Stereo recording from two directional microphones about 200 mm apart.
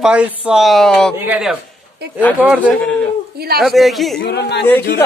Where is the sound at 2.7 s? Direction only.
5° left (ahead or behind).